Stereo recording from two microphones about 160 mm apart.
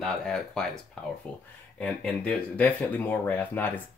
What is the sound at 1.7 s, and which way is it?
Speech, 5° left (ahead or behind).